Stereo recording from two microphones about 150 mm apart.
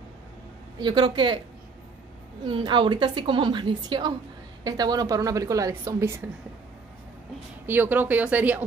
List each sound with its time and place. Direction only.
0.8 s a woman's voice: 30° right (ahead or behind)
2.4 s a woman's voice: 35° right (ahead or behind)
7.6 s speech: 15° right (ahead or behind)